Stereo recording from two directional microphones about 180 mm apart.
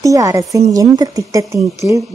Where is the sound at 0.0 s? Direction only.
20° right (ahead or behind).